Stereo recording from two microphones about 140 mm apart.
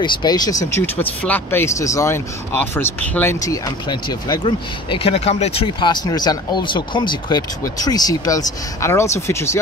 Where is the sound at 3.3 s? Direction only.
25° left (ahead or behind).